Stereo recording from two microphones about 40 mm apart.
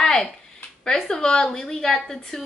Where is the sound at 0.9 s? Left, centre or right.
Centre.